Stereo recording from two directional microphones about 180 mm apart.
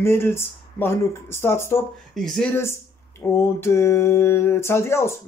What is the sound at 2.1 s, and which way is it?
Speech, centre (ahead or behind).